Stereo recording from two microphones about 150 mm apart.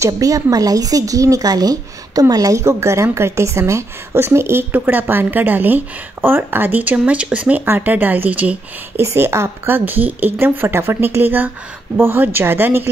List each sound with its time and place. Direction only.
0.0 s speech: 25° right (ahead or behind)